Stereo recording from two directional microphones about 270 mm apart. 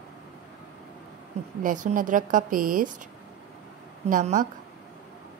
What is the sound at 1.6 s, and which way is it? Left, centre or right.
A woman's voice, right.